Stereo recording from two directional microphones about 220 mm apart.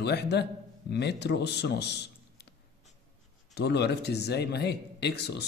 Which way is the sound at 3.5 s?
50° left (ahead or behind).